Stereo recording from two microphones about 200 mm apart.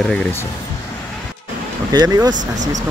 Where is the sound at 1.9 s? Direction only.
20° right (ahead or behind).